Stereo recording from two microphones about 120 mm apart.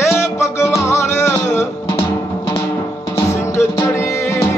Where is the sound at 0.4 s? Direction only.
25° left (ahead or behind).